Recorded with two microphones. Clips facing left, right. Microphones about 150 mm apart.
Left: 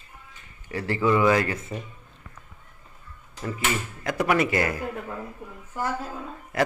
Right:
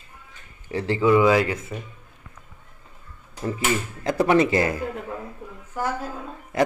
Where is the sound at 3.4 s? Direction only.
30° right (ahead or behind).